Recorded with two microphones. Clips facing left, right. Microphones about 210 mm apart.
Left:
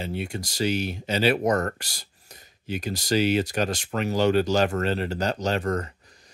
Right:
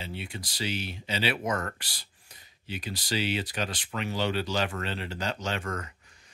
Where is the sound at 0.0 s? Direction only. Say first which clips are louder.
Left 8 dB; 45° left (ahead or behind).